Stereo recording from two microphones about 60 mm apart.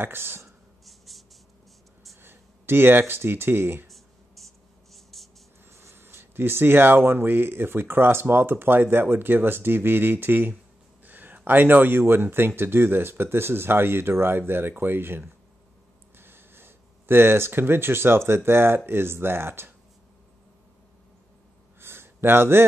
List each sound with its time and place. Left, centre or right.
0.0 s speech: right
0.8 s writing: centre
2.2 s speech: right
4.4 s writing: centre
4.9 s a sound: centre
5.7 s speech: right
21.7 s a sound: right